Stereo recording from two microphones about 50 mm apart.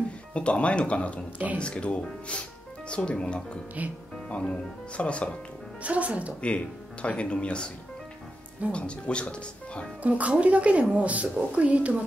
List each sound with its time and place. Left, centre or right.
0.3 s speech: left
3.8 s speech: right
4.3 s speech: left
5.8 s a woman's voice: right
6.4 s speech: left
8.7 s speech: left
10.0 s a woman's voice: right